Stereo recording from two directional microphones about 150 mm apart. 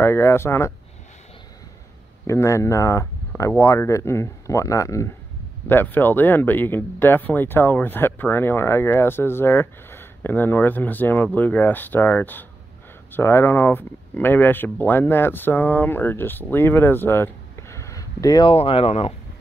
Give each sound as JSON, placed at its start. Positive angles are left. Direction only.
{"t": 0.0, "sound": "speech", "side_deg": 15}
{"t": 2.2, "sound": "speech", "side_deg": 20}
{"t": 18.5, "sound": "speech", "side_deg": 40}